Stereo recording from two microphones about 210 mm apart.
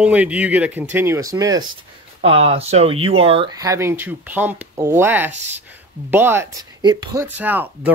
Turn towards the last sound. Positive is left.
turn(degrees=-10)  # may be behind; listen again after turning